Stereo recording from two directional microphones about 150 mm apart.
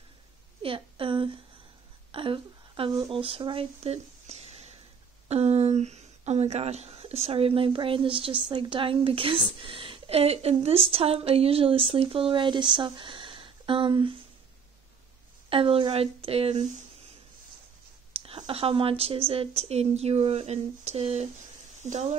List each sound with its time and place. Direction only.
0.6 s a sound: 35° right (ahead or behind)
3.1 s a woman's voice: 35° right (ahead or behind)
15.5 s a woman's voice: 35° right (ahead or behind)
18.1 s a woman's voice: 40° right (ahead or behind)